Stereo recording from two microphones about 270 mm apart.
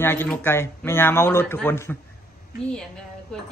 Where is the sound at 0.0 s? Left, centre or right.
Centre.